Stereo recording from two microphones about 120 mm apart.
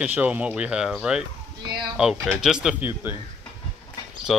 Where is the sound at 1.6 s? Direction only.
35° right (ahead or behind).